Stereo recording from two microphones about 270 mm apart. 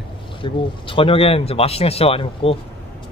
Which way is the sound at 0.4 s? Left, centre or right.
Centre.